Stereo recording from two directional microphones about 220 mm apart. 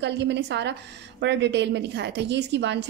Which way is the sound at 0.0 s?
50° right (ahead or behind).